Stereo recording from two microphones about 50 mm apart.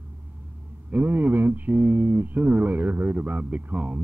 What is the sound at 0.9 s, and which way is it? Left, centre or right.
Speech, right.